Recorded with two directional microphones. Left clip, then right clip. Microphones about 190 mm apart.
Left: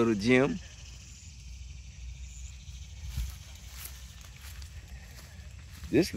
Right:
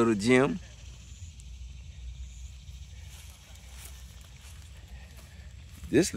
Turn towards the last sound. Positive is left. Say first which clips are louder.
# right 2 dB
turn(degrees=-20)  # may be behind; listen again after turning